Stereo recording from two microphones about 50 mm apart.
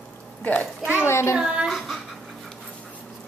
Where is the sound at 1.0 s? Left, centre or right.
Left.